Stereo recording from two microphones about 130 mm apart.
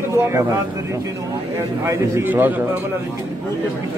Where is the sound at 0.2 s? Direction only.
20° right (ahead or behind).